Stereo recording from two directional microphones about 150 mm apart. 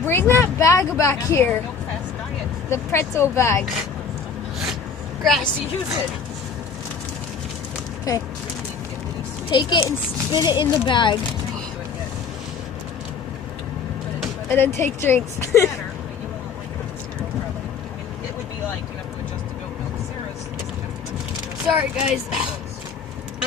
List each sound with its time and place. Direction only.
0.0 s speech: 15° left (ahead or behind)
2.7 s speech: 15° left (ahead or behind)
5.2 s a woman's voice: centre (ahead or behind)
8.1 s speech: 25° left (ahead or behind)
9.5 s speech: 30° left (ahead or behind)
14.5 s speech: 15° left (ahead or behind)
21.6 s speech: 5° right (ahead or behind)